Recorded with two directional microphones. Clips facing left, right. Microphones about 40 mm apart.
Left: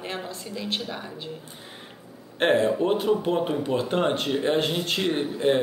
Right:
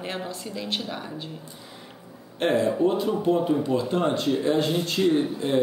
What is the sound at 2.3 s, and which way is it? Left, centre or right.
Speech, left.